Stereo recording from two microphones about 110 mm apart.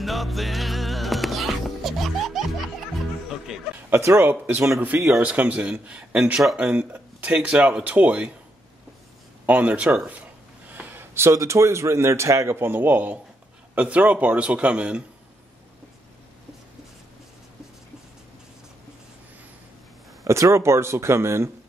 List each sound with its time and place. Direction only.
0.0 s music: centre (ahead or behind)
3.5 s speech: centre (ahead or behind)
3.9 s speech: 20° right (ahead or behind); by 6.7 s 5° right (ahead or behind)
6.7 s speech: 15° right (ahead or behind)
9.5 s speech: 15° right (ahead or behind)
20.2 s speech: 25° right (ahead or behind)